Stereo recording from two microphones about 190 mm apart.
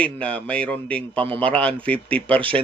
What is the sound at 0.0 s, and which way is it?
Speech, 5° left (ahead or behind).